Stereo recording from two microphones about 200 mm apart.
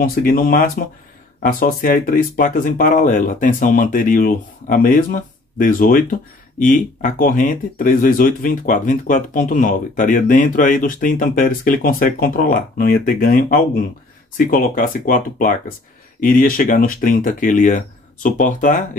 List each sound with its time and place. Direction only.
0.0 s speech: 45° left (ahead or behind)